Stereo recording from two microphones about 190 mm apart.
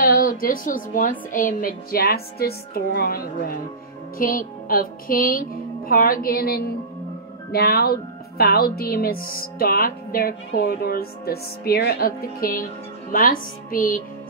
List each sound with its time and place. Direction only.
0.0 s a woman's voice: 50° left (ahead or behind)